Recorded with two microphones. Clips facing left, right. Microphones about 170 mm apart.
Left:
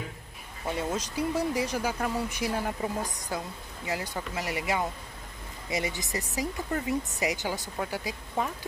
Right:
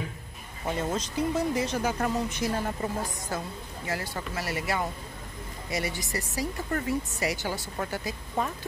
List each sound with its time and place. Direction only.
0.9 s speech: 10° left (ahead or behind)